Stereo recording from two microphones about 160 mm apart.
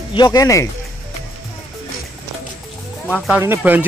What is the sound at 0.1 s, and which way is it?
Speech, 25° left (ahead or behind).